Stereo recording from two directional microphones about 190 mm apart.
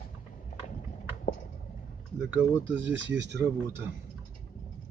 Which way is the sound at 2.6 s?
75° right (ahead or behind).